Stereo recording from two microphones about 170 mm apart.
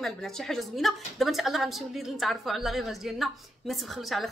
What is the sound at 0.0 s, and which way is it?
A woman's voice, centre (ahead or behind).